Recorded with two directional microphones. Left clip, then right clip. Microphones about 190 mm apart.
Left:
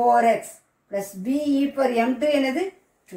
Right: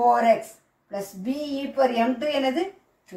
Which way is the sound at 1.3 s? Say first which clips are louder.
Left 7 dB; centre (ahead or behind).